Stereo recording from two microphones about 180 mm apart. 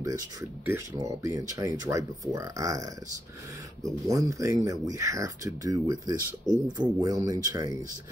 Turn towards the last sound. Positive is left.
turn(degrees=-20)  # may be behind; listen again after turning